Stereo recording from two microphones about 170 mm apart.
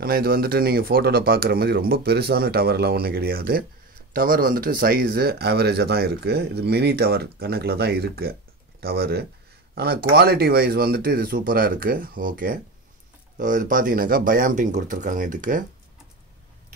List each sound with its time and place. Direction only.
0.0 s speech: 60° right (ahead or behind)